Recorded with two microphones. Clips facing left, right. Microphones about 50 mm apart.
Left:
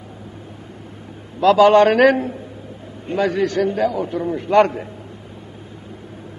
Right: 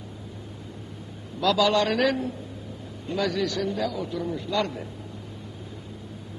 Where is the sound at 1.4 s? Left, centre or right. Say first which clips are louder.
Left 11 dB; left.